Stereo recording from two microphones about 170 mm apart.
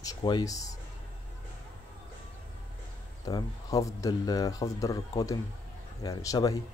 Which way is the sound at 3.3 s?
20° left (ahead or behind).